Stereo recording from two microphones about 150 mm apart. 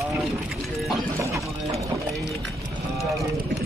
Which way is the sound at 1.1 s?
20° right (ahead or behind).